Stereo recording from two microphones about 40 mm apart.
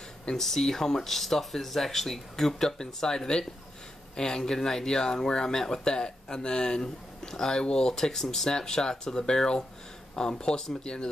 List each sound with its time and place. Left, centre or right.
0.4 s speech: centre
7.9 s speech: centre